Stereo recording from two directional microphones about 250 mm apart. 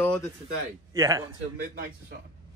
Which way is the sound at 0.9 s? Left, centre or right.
Centre.